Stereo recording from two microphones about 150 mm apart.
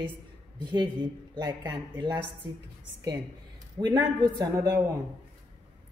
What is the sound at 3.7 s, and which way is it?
A man's voice, 30° right (ahead or behind).